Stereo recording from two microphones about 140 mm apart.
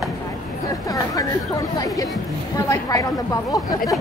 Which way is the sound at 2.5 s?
25° left (ahead or behind).